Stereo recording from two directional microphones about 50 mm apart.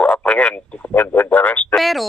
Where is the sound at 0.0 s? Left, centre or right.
Left.